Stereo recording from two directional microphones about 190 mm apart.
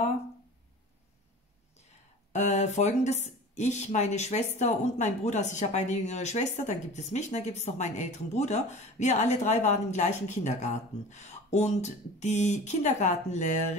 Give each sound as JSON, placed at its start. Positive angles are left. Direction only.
{"t": 2.3, "sound": "speech", "side_deg": 35}